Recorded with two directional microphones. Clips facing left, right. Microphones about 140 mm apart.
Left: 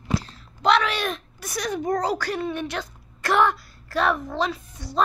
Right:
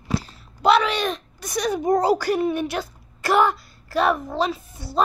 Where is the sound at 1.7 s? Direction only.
10° right (ahead or behind).